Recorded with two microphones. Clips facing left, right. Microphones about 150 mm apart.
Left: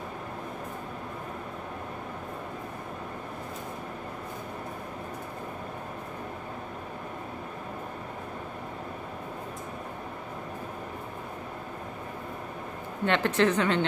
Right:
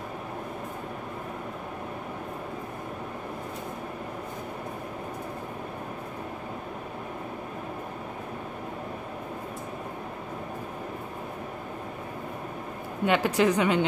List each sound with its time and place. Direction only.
13.0 s a woman's voice: 10° right (ahead or behind)